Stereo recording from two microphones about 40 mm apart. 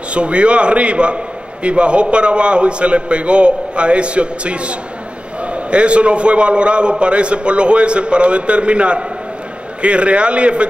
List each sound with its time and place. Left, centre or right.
0.1 s a man's voice: right